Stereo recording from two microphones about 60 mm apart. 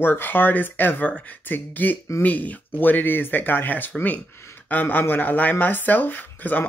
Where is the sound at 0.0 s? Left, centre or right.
Left.